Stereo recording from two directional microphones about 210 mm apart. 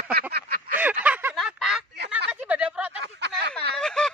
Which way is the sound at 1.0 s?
5° right (ahead or behind).